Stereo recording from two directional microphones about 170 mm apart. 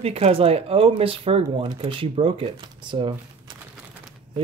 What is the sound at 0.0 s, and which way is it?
Speech, 35° right (ahead or behind).